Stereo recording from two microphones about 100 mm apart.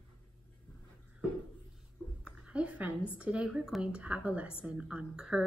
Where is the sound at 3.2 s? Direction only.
10° right (ahead or behind).